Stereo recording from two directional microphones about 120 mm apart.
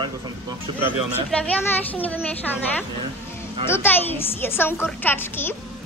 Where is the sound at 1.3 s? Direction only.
10° left (ahead or behind).